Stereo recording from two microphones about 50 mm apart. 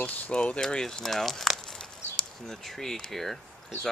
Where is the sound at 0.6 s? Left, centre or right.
Centre.